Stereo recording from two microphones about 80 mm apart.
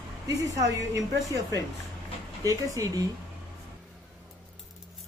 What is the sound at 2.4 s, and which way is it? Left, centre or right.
Speech, right.